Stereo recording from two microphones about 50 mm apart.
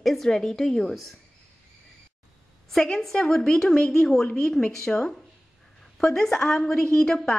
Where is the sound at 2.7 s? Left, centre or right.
Centre.